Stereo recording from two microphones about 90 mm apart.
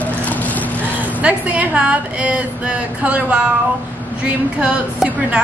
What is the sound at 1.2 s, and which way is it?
A woman's voice, 15° right (ahead or behind).